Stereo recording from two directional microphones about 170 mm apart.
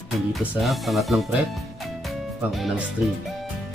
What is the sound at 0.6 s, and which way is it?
Speech, centre (ahead or behind).